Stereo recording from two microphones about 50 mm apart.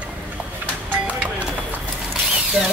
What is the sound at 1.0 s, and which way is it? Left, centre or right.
Music, right.